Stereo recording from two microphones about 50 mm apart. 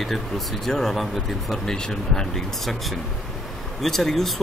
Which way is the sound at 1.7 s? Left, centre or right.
Centre.